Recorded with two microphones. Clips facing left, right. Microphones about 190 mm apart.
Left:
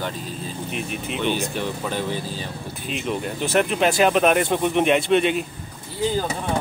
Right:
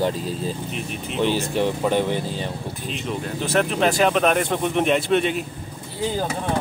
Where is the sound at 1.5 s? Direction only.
20° right (ahead or behind).